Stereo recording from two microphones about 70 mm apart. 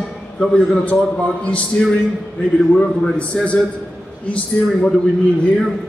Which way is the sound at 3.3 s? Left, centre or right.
Centre.